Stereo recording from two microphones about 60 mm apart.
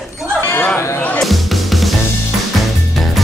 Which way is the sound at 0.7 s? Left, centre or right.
Left.